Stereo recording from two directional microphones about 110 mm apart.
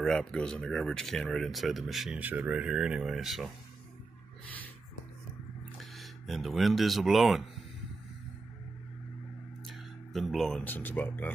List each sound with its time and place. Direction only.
0.0 s speech: 5° left (ahead or behind)
2.1 s speech: 15° right (ahead or behind)
5.8 s speech: centre (ahead or behind)
9.7 s a sound: centre (ahead or behind)
10.6 s speech: 15° left (ahead or behind)